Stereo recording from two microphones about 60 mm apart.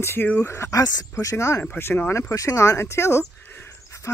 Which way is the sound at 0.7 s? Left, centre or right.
Left.